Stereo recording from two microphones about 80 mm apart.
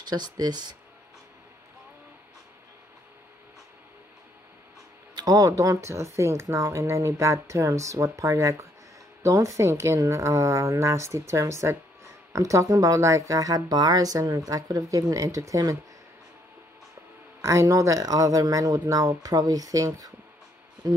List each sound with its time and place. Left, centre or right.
0.0 s speech: right
5.1 s a woman's voice: right
17.4 s a woman's voice: right